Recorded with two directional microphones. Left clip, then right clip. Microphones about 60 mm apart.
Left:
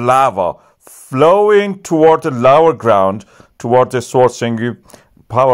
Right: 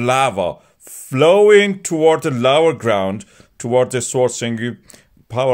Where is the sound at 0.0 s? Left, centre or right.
Left.